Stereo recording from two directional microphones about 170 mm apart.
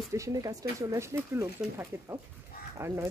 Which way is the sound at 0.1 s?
20° right (ahead or behind).